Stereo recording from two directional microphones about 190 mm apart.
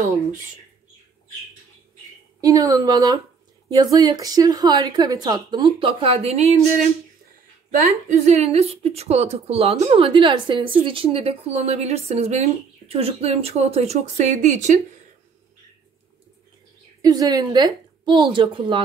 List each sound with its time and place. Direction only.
2.4 s a woman's voice: 20° right (ahead or behind); by 6.9 s 35° right (ahead or behind)
8.1 s a woman's voice: 35° right (ahead or behind)
17.0 s a woman's voice: 20° right (ahead or behind)